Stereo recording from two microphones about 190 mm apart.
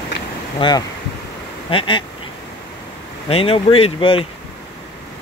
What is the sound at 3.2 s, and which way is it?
Speech, 30° left (ahead or behind).